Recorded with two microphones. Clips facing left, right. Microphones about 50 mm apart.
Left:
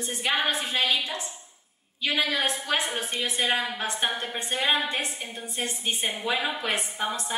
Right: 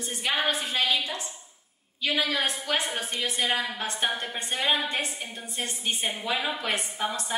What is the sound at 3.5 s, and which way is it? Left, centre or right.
Speech, left.